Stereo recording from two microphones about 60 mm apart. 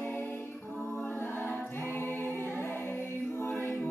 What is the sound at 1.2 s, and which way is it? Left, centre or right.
A capella, left.